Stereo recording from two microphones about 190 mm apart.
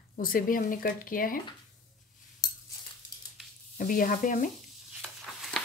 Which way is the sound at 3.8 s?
45° left (ahead or behind).